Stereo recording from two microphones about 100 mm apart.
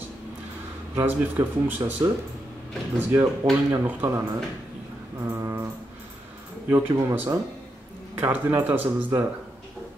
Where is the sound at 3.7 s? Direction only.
20° right (ahead or behind).